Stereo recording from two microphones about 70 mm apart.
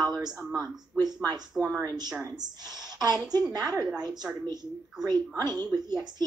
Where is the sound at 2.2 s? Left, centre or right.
Right.